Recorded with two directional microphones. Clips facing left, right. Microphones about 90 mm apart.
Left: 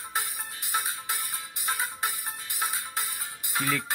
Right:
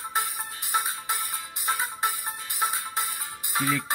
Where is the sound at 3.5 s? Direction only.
10° right (ahead or behind).